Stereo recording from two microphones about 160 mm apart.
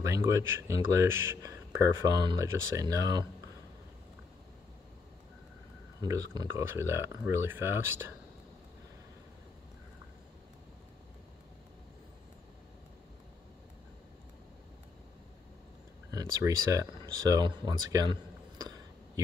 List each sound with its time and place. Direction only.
0.0 s speech: 20° right (ahead or behind)
5.9 s speech: 25° right (ahead or behind)
16.1 s speech: 20° right (ahead or behind)